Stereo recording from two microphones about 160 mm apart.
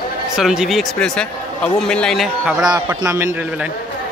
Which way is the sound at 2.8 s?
20° right (ahead or behind).